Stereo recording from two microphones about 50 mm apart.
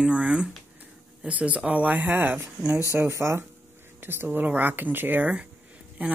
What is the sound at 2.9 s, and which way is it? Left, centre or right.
Speech, right.